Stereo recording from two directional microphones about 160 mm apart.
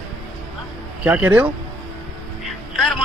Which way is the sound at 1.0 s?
10° right (ahead or behind).